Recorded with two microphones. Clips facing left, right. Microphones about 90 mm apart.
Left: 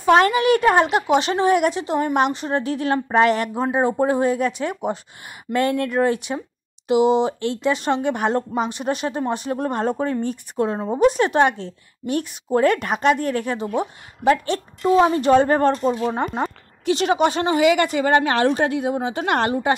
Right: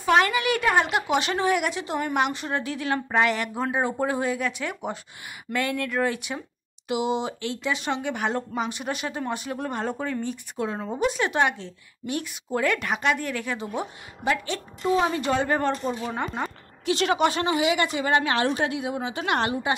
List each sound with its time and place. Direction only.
0.0 s a woman's voice: 35° left (ahead or behind)
16.3 s a sound: 35° left (ahead or behind)
16.9 s a woman's voice: 25° left (ahead or behind)
17.6 s a woman's voice: 50° left (ahead or behind)